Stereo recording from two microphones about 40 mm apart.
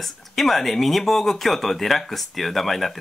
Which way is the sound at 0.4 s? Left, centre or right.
Centre.